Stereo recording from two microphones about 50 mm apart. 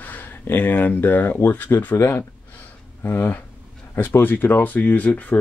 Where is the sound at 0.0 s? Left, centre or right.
Left.